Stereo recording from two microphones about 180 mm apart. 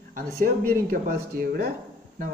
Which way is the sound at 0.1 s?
50° right (ahead or behind).